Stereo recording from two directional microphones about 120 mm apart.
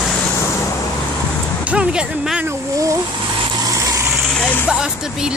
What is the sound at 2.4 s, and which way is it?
Speech, 25° right (ahead or behind).